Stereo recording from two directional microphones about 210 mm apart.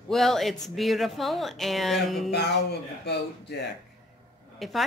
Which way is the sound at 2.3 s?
55° left (ahead or behind).